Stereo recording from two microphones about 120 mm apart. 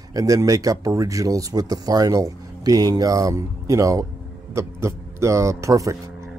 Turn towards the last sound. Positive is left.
turn(degrees=-25)  # may be behind; listen again after turning